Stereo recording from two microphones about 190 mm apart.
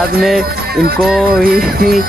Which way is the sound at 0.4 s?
50° right (ahead or behind).